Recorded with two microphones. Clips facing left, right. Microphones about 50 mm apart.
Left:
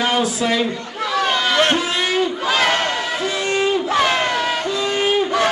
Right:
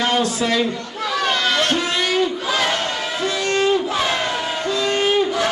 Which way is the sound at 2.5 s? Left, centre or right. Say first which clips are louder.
Left 5 dB; left.